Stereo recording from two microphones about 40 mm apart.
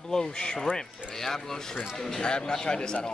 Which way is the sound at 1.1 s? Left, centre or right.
Centre.